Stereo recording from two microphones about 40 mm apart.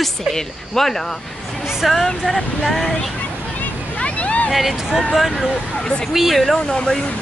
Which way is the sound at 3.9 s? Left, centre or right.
Left.